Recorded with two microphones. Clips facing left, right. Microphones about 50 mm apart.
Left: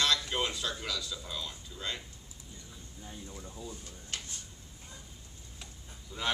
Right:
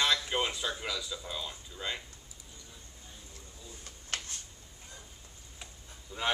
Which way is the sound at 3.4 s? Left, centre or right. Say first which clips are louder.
Left 9 dB; left.